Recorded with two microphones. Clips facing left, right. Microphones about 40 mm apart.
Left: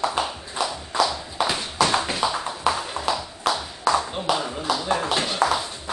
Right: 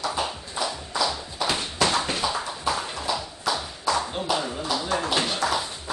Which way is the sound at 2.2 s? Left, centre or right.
Left.